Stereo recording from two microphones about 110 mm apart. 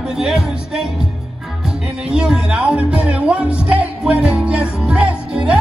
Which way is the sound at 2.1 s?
10° right (ahead or behind).